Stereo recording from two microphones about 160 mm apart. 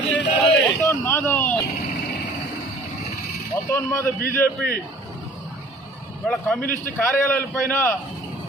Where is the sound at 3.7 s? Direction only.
15° left (ahead or behind).